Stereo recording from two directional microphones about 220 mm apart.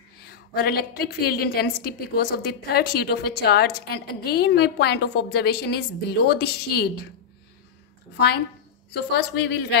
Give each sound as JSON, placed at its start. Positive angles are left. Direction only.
{"t": 0.3, "sound": "a woman's voice", "side_deg": 45}
{"t": 8.9, "sound": "a woman's voice", "side_deg": 50}